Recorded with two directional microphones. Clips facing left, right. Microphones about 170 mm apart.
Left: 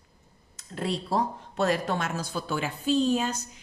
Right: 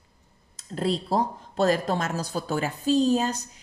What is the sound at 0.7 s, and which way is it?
A woman's voice, 35° right (ahead or behind).